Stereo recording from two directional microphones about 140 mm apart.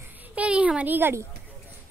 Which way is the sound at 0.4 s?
10° right (ahead or behind).